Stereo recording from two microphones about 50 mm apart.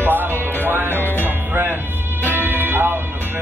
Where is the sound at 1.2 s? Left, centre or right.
Right.